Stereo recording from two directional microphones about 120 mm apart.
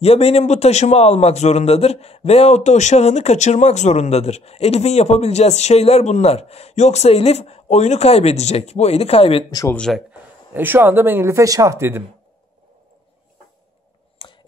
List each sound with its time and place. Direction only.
0.0 s a man's voice: 55° left (ahead or behind)
9.8 s a man's voice: 5° left (ahead or behind)
10.1 s speech: 15° right (ahead or behind)
14.2 s a sound: 45° left (ahead or behind)